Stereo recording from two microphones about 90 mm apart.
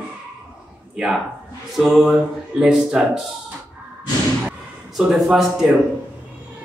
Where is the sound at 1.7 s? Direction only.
5° right (ahead or behind).